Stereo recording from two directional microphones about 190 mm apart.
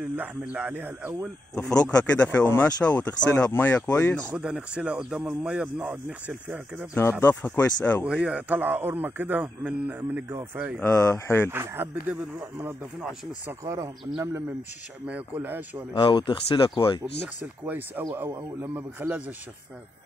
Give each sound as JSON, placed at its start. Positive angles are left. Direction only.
{"t": 0.1, "sound": "speech", "side_deg": -10}
{"t": 1.5, "sound": "speech", "side_deg": 5}
{"t": 1.8, "sound": "speech", "side_deg": 15}
{"t": 4.3, "sound": "speech", "side_deg": -5}
{"t": 6.9, "sound": "speech", "side_deg": 15}
{"t": 8.0, "sound": "speech", "side_deg": -5}
{"t": 10.8, "sound": "speech", "side_deg": 15}
{"t": 11.5, "sound": "speech", "side_deg": -10}
{"t": 15.9, "sound": "speech", "side_deg": 25}
{"t": 17.4, "sound": "speech", "side_deg": -10}